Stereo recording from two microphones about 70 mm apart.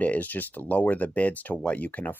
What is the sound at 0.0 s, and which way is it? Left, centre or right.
Speech, left.